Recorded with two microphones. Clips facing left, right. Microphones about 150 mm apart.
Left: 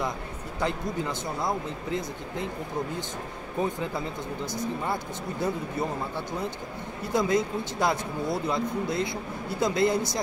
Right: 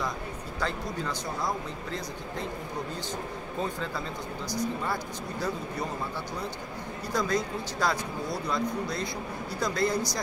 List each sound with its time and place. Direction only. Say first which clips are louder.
0.6 s speech: left 4 dB; 20° left (ahead or behind)
3.5 s speech: left 4 dB; 15° left (ahead or behind)
7.1 s speech: left 4 dB; 25° left (ahead or behind)